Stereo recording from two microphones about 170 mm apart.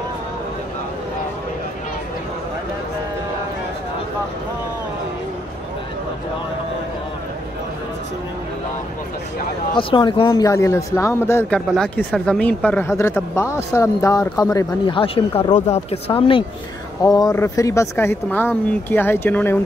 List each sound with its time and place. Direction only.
9.8 s speech: 30° left (ahead or behind)
15.5 s speech: 40° left (ahead or behind)
17.0 s speech: 20° left (ahead or behind)